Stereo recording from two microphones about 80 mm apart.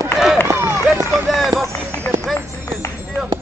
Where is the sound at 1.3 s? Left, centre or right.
Centre.